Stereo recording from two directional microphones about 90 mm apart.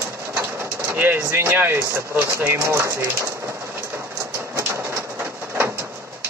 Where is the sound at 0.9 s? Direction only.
20° right (ahead or behind).